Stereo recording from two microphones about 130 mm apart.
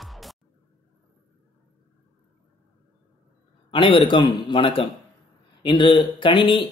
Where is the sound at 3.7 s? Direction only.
40° left (ahead or behind).